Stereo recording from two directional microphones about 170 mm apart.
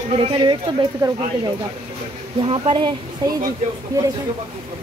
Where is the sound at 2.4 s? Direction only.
30° right (ahead or behind).